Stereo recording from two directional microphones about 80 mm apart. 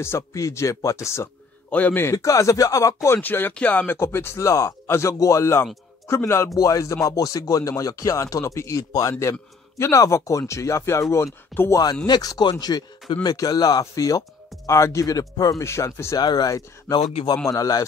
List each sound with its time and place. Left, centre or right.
0.0 s a man's voice: left
1.7 s speech: left
2.1 s speech: left
3.2 s speech: left
4.0 s a man's voice: left
6.5 s a man's voice: left
11.7 s speech: left
15.6 s a man's voice: left
16.2 s a man's voice: left
17.5 s speech: left